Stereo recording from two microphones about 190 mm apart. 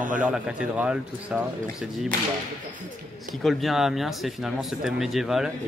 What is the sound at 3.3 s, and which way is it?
Speech, centre (ahead or behind).